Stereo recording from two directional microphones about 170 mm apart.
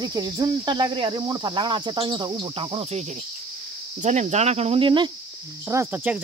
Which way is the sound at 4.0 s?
40° right (ahead or behind).